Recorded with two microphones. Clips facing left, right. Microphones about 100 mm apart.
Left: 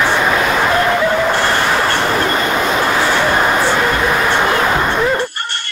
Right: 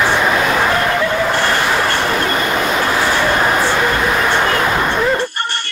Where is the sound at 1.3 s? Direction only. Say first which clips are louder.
Left 1 dB; 15° left (ahead or behind).